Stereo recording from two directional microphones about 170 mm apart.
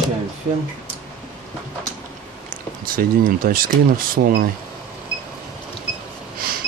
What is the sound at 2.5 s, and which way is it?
Speech, 55° right (ahead or behind).